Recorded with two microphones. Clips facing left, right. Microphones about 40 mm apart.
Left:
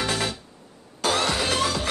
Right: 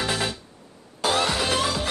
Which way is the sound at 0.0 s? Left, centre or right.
Centre.